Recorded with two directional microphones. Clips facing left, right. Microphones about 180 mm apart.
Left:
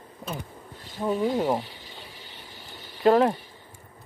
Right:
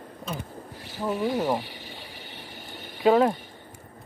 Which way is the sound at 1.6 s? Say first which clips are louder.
Right 3 dB; 70° right (ahead or behind).